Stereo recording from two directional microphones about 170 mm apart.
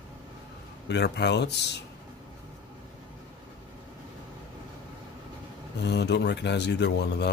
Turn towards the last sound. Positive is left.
turn(degrees=85)